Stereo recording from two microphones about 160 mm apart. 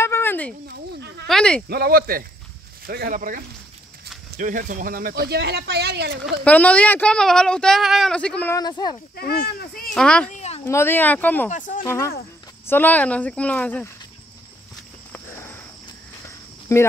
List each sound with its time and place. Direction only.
0.0 s a sound: 15° left (ahead or behind)
0.7 s bleat: 90° right
1.2 s a sound: 5° left (ahead or behind)
1.7 s speech: 70° right (ahead or behind); by 6.1 s 90° right
6.4 s speech: 10° left (ahead or behind)
8.5 s speech: 25° left (ahead or behind)
9.1 s speech: 75° left (ahead or behind)
9.9 s speech: 5° left (ahead or behind)
10.3 s a sound: 45° left (ahead or behind)
10.6 s speech: 15° left (ahead or behind)
11.5 s speech: 55° left (ahead or behind)
11.8 s speech: 15° left (ahead or behind)
16.7 s speech: 15° left (ahead or behind)